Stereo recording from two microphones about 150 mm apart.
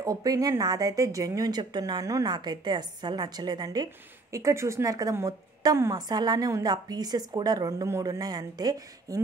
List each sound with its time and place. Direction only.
0.0 s a woman's voice: 25° right (ahead or behind)